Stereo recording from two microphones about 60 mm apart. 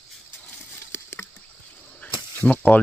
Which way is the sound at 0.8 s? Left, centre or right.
Left.